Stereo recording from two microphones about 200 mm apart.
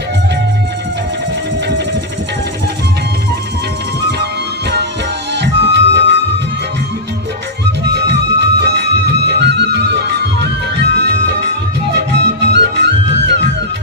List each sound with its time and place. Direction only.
4.2 s music: 55° right (ahead or behind)
7.9 s music: 55° right (ahead or behind)